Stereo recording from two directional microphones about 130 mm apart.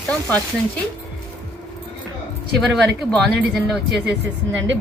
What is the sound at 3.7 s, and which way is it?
Speech, centre (ahead or behind).